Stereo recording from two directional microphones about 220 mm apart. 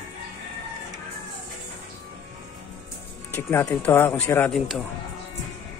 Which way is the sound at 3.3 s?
10° left (ahead or behind).